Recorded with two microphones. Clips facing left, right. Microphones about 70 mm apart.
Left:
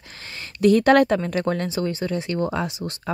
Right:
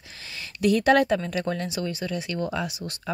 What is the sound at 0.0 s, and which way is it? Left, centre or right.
Speech, left.